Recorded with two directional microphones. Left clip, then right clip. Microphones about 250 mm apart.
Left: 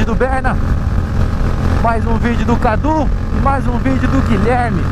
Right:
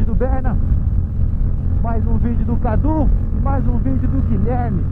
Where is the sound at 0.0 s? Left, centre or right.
Centre.